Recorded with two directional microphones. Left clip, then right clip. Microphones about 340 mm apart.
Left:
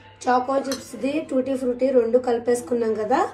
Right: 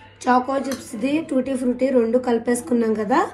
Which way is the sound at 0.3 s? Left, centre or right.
Right.